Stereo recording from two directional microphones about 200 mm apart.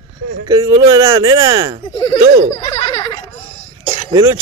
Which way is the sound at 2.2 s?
35° right (ahead or behind).